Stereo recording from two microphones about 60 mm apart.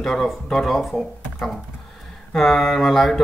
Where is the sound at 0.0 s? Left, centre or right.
Centre.